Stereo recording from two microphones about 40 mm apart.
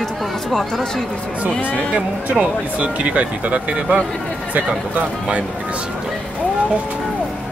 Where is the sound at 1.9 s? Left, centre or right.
Right.